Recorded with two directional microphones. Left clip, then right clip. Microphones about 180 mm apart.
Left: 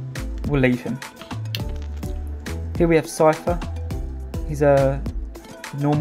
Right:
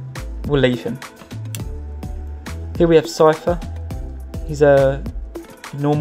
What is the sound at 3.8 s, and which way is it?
Music, centre (ahead or behind).